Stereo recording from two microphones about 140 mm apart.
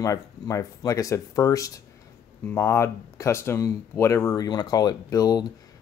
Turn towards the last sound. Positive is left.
turn(degrees=25)  # may be behind; listen again after turning